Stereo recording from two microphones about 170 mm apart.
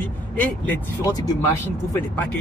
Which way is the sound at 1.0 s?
15° left (ahead or behind).